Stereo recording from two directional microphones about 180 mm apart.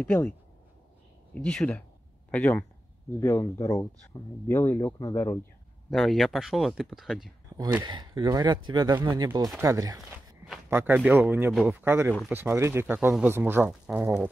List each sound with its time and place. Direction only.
0.0 s speech: 10° left (ahead or behind)
1.3 s speech: 5° left (ahead or behind)
5.9 s speech: centre (ahead or behind)
7.8 s speech: 25° right (ahead or behind); by 14.3 s 10° right (ahead or behind)